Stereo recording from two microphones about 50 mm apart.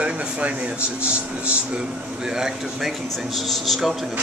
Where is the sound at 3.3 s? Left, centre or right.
Centre.